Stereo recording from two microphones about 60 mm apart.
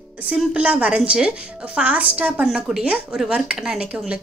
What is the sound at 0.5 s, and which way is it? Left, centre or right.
A woman's voice, centre.